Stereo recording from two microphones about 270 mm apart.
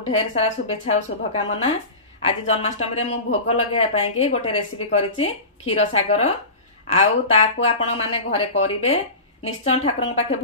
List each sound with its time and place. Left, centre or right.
0.0 s speech: left